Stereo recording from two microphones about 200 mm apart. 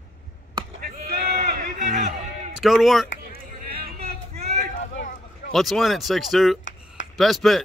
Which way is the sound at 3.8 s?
50° right (ahead or behind).